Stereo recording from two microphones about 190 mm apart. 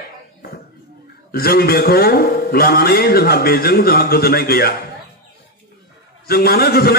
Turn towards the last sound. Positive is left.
turn(degrees=55)  # may be behind; listen again after turning